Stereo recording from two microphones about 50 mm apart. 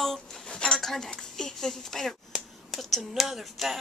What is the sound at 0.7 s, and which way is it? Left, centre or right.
Speech, centre.